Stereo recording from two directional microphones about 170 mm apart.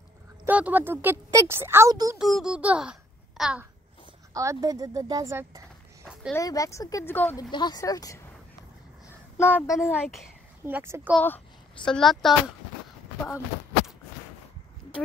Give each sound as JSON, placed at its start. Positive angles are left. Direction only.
{"t": 0.5, "sound": "speech", "side_deg": -10}
{"t": 2.1, "sound": "a child's voice", "side_deg": 0}
{"t": 4.3, "sound": "a woman's voice", "side_deg": -20}
{"t": 6.3, "sound": "speech", "side_deg": 20}
{"t": 7.5, "sound": "speech", "side_deg": 25}
{"t": 9.0, "sound": "a sound", "side_deg": 15}
{"t": 9.8, "sound": "speech", "side_deg": 0}
{"t": 10.6, "sound": "speech", "side_deg": -15}
{"t": 11.1, "sound": "a woman's voice", "side_deg": 10}